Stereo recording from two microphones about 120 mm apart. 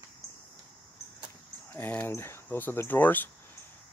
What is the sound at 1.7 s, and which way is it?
Speech, 15° left (ahead or behind).